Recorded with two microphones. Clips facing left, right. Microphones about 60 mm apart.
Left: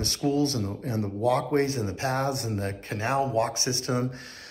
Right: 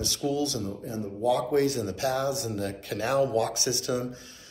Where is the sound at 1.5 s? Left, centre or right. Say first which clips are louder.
Even; left.